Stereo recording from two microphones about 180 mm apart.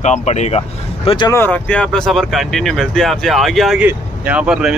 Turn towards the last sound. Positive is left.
turn(degrees=-5)  # may be behind; listen again after turning